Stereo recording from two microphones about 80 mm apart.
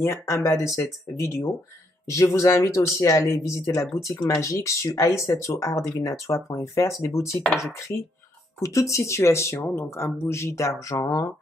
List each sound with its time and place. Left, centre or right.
0.0 s speech: left
8.5 s speech: left